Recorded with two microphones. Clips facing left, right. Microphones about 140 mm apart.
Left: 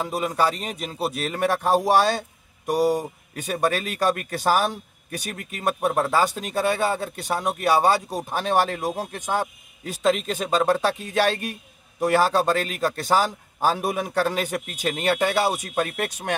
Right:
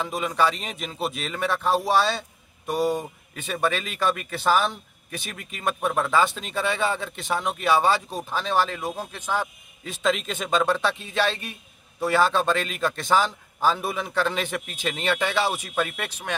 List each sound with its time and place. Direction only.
0.4 s a man's voice: 40° left (ahead or behind)
2.7 s speech: 10° left (ahead or behind)
3.3 s speech: 40° left (ahead or behind)
10.0 s speech: 40° left (ahead or behind)